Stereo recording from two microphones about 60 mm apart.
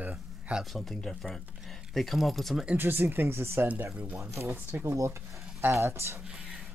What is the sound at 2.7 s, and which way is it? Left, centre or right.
Speech, right.